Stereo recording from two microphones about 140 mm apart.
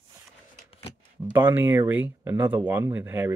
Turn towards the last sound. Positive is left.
turn(degrees=-15)  # may be behind; listen again after turning